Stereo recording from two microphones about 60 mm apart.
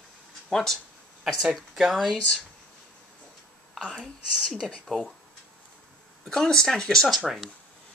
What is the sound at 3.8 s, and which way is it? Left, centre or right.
Speech, centre.